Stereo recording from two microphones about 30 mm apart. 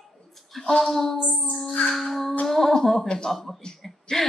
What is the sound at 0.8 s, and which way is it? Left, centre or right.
Speech, centre.